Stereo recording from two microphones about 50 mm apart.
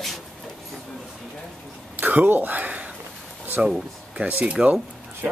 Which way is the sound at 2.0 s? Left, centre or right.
Right.